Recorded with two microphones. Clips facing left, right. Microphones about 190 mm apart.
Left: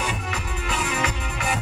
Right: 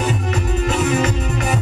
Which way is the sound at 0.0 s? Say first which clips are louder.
Right 8 dB; 40° right (ahead or behind).